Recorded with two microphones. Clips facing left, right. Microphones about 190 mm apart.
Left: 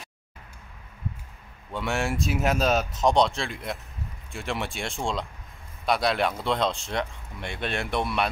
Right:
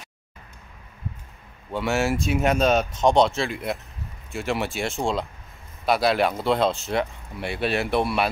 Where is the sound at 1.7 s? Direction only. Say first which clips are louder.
Right 5 dB; 5° right (ahead or behind).